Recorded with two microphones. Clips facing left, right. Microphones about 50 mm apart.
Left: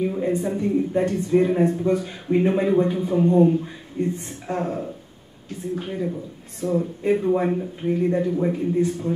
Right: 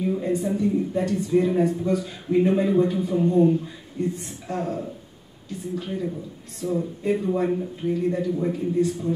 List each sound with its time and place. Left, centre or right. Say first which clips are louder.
0.0 s a man's voice: left 1 dB; left